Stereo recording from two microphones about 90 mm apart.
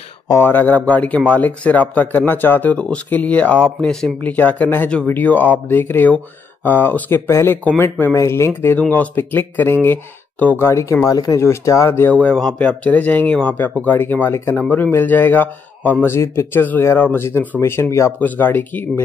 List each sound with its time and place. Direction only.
0.3 s a man's voice: 25° left (ahead or behind)
12.1 s a man's voice: 15° left (ahead or behind)